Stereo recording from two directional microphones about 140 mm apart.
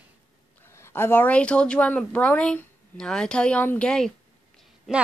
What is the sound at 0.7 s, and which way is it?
A woman's voice, 20° left (ahead or behind).